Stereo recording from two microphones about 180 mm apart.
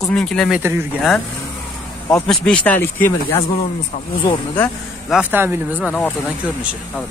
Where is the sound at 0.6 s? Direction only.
15° right (ahead or behind).